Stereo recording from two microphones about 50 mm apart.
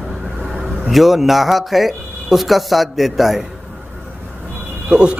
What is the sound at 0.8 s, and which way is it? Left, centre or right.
Speech, centre.